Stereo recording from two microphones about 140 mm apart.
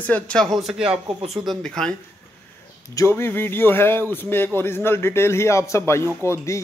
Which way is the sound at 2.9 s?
20° left (ahead or behind).